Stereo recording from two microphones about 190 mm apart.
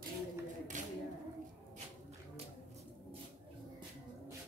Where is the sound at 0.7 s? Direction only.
40° right (ahead or behind).